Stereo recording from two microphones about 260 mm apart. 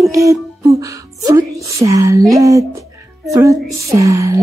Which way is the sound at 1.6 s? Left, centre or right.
Centre.